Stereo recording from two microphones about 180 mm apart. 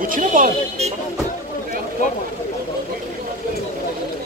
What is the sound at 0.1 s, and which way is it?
Speech, 45° right (ahead or behind).